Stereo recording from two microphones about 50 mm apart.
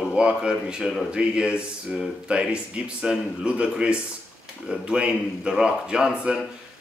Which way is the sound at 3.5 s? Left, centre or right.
Right.